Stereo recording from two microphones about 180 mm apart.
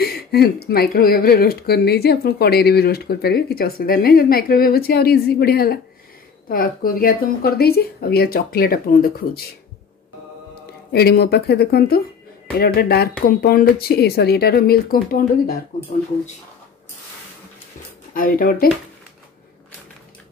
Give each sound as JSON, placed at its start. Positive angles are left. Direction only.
{"t": 0.0, "sound": "speech", "side_deg": 60}
{"t": 10.9, "sound": "speech", "side_deg": 60}
{"t": 18.1, "sound": "speech", "side_deg": 50}